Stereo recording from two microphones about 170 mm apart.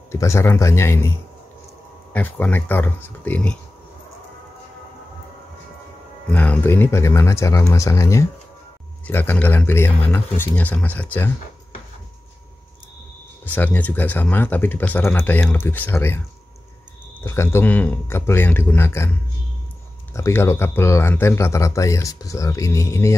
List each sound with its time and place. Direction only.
0.1 s speech: 15° left (ahead or behind)
2.1 s speech: 10° left (ahead or behind)
6.3 s speech: 10° left (ahead or behind)
13.6 s speech: 10° left (ahead or behind)
17.2 s speech: 15° left (ahead or behind)